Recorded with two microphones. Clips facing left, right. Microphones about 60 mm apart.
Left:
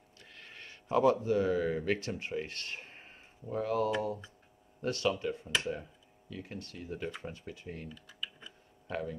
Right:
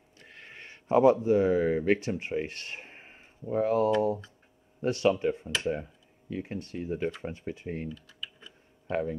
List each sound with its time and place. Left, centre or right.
0.3 s a sound: right
0.9 s speech: right
7.9 s typing: centre
8.8 s speech: right